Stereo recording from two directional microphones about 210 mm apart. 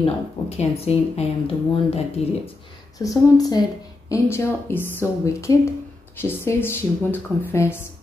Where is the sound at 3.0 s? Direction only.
15° left (ahead or behind).